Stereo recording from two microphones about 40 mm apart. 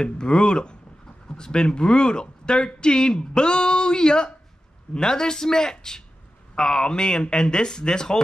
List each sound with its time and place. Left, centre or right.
0.0 s speech: left